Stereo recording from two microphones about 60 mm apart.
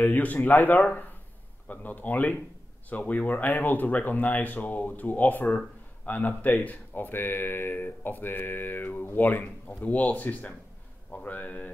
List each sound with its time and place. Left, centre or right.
0.0 s speech: left